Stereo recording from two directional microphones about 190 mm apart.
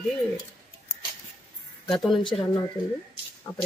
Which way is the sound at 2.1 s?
25° left (ahead or behind).